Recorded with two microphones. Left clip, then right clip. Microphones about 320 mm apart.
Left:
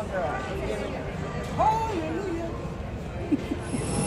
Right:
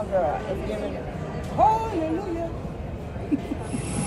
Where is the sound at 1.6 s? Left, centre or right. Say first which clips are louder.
Right 4 dB; right.